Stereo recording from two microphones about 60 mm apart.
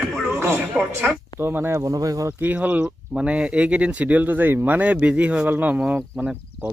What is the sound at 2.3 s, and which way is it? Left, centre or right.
Speech, right.